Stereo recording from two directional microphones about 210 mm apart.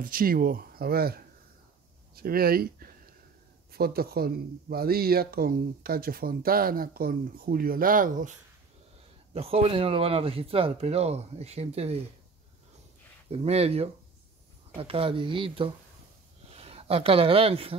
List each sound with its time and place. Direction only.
0.0 s speech: 45° right (ahead or behind)
9.3 s speech: 30° right (ahead or behind)
13.3 s speech: 30° right (ahead or behind)